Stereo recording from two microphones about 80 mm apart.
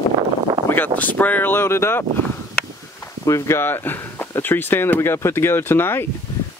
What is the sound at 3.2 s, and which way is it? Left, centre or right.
Speech, left.